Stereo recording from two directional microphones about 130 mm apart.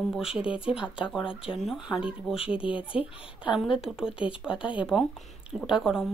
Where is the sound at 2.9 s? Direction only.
40° left (ahead or behind).